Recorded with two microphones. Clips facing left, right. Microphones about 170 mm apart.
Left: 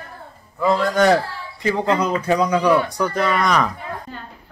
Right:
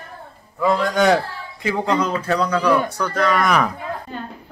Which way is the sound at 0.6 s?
Centre (ahead or behind).